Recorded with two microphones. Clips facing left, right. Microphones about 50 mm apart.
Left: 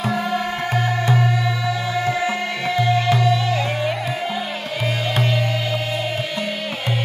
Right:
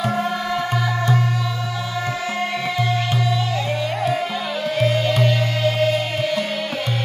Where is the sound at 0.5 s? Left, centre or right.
Left.